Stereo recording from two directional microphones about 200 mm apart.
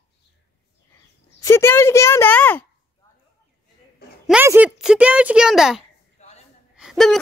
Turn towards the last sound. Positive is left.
turn(degrees=0)  # may be behind; listen again after turning